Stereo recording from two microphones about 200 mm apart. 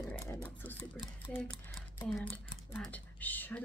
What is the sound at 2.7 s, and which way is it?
Speech, 5° left (ahead or behind).